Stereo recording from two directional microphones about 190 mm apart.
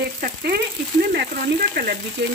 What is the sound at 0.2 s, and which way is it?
Speech, 55° right (ahead or behind).